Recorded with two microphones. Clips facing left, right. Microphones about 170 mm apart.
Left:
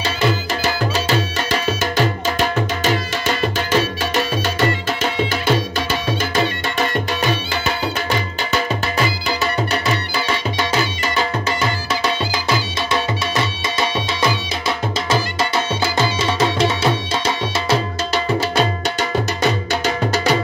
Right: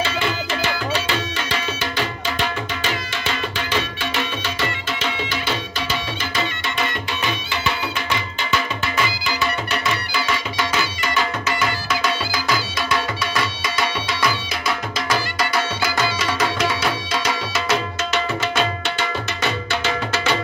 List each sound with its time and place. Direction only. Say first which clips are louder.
0.0 s music: left 3 dB; 40° left (ahead or behind)
13.4 s music: left 1 dB; 25° left (ahead or behind); by 20.3 s 40° left (ahead or behind)